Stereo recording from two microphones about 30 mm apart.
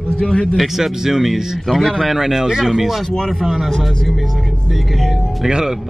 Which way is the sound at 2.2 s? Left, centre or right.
Centre.